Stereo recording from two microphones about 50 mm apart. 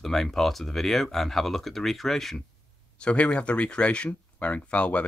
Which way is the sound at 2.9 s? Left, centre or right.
Left.